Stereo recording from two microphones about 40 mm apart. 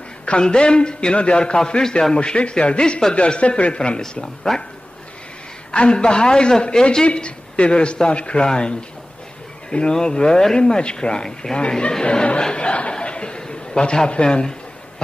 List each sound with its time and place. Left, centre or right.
0.2 s a man's voice: left
2.1 s a man's voice: left
5.7 s a man's voice: left
7.1 s a man's voice: left
12.0 s a sound: left